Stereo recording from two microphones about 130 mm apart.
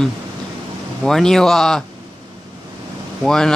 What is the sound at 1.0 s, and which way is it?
Speech, 5° left (ahead or behind).